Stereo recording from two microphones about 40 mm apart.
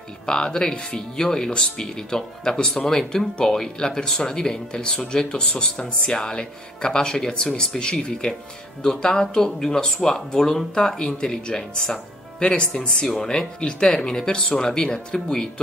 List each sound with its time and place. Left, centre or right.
0.3 s speech: centre
13.1 s speech: centre